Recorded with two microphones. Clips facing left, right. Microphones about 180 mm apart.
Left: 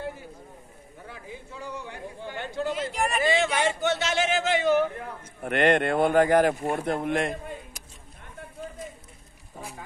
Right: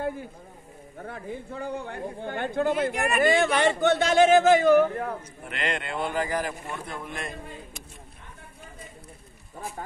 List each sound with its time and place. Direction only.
1.0 s a man's voice: 55° right (ahead or behind)
5.4 s speech: 60° left (ahead or behind)